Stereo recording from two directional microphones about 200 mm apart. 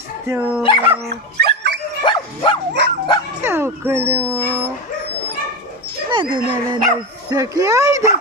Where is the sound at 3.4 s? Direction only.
10° right (ahead or behind).